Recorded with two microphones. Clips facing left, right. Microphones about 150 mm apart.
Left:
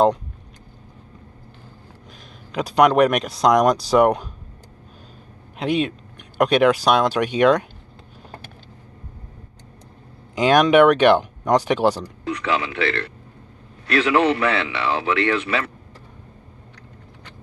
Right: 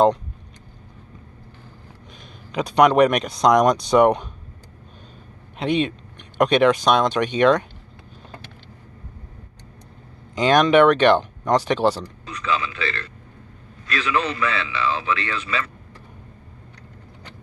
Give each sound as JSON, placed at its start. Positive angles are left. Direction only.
{"t": 2.5, "sound": "speech", "side_deg": 5}
{"t": 5.6, "sound": "speech", "side_deg": 5}
{"t": 10.3, "sound": "speech", "side_deg": 10}
{"t": 12.3, "sound": "a man's voice", "side_deg": 90}